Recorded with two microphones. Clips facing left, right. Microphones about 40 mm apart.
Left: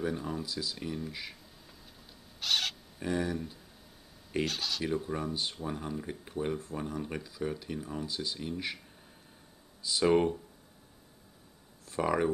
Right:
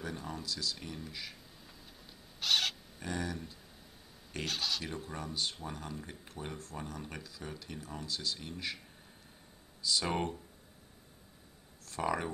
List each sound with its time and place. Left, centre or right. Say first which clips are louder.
0.0 s speech: left 7 dB; centre
1.3 s a sound: left 1 dB; centre
3.0 s speech: left 7 dB; centre
4.5 s speech: left 3 dB; centre
9.8 s a sound: even; centre
10.0 s speech: left 13 dB; centre
12.0 s speech: left 5 dB; centre